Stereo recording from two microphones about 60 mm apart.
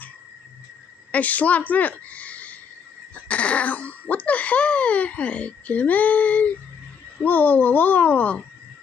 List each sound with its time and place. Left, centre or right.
1.1 s a child's voice: left